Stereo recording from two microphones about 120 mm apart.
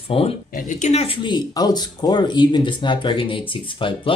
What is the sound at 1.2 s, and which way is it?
Speech, 35° left (ahead or behind).